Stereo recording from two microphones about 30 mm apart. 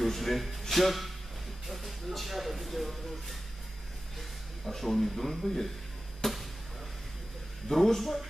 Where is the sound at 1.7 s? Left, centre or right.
Centre.